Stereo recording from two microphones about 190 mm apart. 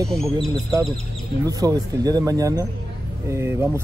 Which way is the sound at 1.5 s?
20° right (ahead or behind).